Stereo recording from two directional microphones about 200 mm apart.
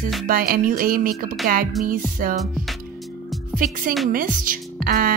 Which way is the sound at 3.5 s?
45° right (ahead or behind).